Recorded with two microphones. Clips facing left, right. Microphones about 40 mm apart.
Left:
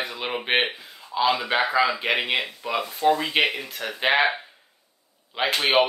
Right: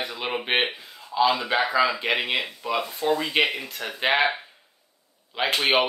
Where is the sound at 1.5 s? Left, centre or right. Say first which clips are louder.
Even; centre.